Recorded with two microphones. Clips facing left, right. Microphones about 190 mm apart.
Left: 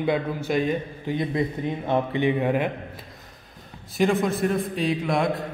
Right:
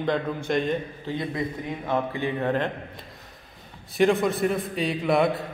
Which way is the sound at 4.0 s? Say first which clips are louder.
Right 1 dB; centre (ahead or behind).